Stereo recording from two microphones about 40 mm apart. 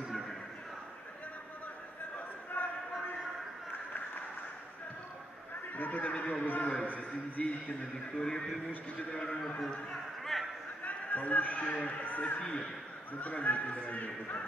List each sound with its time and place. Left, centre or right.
2.6 s a sound: left
5.8 s speech: left
6.4 s a man's voice: left
7.0 s speech: left
8.2 s a man's voice: centre
10.3 s a sound: centre
10.8 s a man's voice: left
12.4 s a man's voice: left
13.2 s speech: left